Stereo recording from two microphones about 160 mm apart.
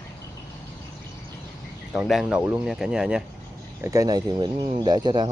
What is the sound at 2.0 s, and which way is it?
Speech, 5° right (ahead or behind).